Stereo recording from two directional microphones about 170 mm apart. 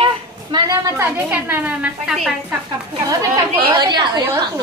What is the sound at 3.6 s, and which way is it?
Speech, 30° right (ahead or behind).